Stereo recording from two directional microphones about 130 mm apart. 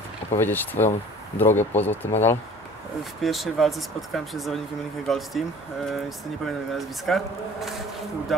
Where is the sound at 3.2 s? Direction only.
Centre (ahead or behind).